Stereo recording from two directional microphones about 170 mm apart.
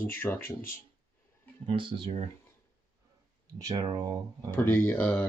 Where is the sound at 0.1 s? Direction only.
15° left (ahead or behind).